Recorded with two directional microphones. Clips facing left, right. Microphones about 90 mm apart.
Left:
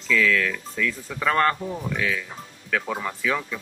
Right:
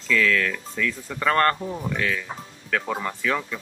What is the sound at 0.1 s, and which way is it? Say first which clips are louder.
Speech: even; centre (ahead or behind).